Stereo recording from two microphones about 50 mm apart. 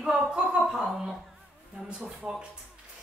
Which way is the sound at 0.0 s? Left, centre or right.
Centre.